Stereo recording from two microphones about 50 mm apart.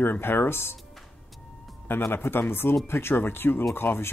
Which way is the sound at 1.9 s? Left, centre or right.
Left.